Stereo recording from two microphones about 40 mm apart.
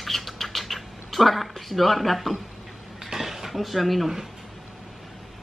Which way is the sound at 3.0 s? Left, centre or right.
Centre.